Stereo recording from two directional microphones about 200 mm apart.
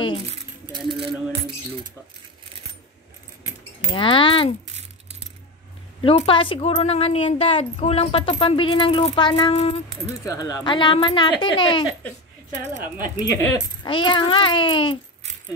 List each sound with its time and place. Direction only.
0.7 s coin: 25° right (ahead or behind)
3.9 s speech: 25° left (ahead or behind)
5.9 s speech: 25° left (ahead or behind)
10.2 s speech: 15° left (ahead or behind)
13.1 s speech: 20° left (ahead or behind)